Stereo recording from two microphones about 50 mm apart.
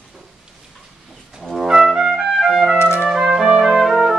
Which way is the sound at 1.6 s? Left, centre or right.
Centre.